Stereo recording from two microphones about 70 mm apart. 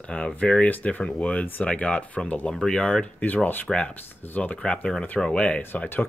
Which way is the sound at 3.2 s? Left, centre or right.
Left.